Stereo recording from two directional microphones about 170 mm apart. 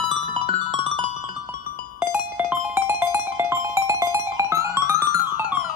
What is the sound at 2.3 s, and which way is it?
Music, 10° right (ahead or behind).